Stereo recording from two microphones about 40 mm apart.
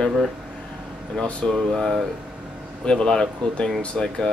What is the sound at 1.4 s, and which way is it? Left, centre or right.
Speech, centre.